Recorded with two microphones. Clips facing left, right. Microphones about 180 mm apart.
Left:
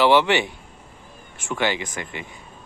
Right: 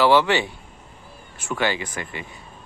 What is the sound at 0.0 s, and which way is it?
Speech, 20° left (ahead or behind).